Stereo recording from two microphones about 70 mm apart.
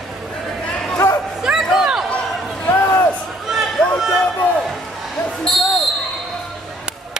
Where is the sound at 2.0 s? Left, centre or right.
Centre.